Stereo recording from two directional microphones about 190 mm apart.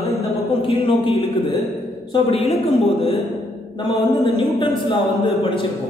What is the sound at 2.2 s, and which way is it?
Speech, 30° left (ahead or behind).